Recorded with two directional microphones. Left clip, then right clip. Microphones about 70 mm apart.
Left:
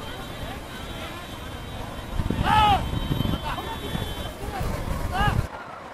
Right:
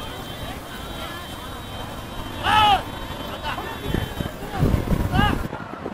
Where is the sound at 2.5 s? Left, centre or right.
Right.